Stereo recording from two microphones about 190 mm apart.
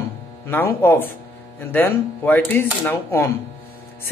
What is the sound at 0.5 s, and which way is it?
Speech, 10° left (ahead or behind).